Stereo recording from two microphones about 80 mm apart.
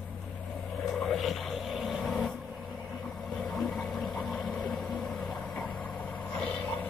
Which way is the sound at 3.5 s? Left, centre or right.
Centre.